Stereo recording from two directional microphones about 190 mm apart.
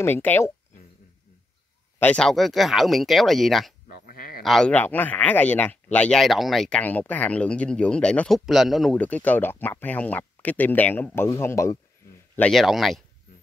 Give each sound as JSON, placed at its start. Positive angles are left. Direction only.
{"t": 0.0, "sound": "speech", "side_deg": 10}
{"t": 2.0, "sound": "speech", "side_deg": 5}
{"t": 4.1, "sound": "a sound", "side_deg": 50}
{"t": 4.4, "sound": "speech", "side_deg": 0}
{"t": 12.4, "sound": "speech", "side_deg": 0}